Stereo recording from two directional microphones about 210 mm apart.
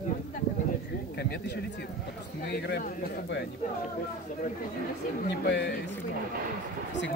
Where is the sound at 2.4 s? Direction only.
50° left (ahead or behind).